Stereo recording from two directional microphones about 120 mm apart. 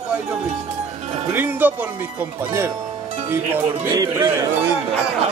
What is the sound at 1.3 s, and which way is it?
Speech, 15° right (ahead or behind).